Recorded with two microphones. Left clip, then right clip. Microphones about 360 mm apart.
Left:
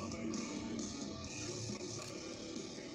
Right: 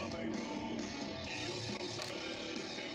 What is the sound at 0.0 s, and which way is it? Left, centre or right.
Music, right.